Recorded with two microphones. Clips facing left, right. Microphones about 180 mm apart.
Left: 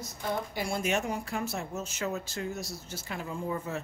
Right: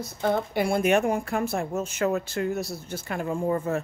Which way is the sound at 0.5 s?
60° right (ahead or behind).